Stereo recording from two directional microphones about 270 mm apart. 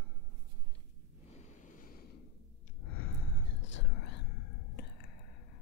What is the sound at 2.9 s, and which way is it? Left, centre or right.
Whispering, left.